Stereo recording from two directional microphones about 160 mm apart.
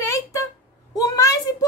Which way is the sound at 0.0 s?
20° left (ahead or behind).